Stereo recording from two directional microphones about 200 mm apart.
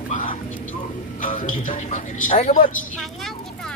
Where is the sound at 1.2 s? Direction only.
40° left (ahead or behind).